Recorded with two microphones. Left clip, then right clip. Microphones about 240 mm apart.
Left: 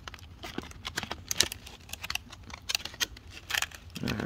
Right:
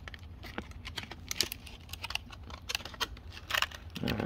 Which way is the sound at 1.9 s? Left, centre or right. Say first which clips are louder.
Left 2 dB; centre.